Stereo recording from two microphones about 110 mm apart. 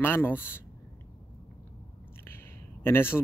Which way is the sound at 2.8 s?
20° left (ahead or behind).